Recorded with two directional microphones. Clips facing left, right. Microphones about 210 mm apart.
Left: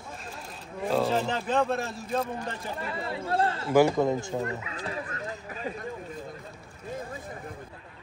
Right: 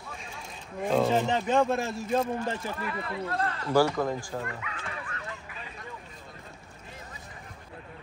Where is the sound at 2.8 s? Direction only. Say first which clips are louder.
Even; 30° left (ahead or behind).